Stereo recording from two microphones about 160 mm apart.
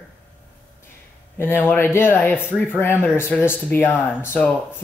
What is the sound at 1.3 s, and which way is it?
Speech, 15° left (ahead or behind).